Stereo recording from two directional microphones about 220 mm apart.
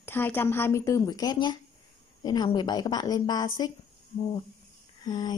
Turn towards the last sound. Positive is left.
turn(degrees=20)  # may be behind; listen again after turning